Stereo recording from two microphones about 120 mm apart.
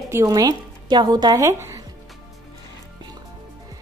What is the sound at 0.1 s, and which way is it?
Speech, 30° right (ahead or behind).